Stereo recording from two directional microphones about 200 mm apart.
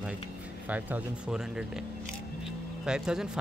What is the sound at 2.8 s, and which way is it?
Speech, 5° right (ahead or behind).